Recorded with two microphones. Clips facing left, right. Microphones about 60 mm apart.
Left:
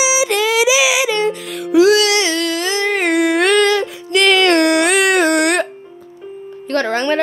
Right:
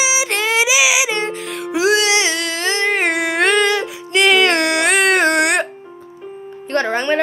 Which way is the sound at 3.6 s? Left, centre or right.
Centre.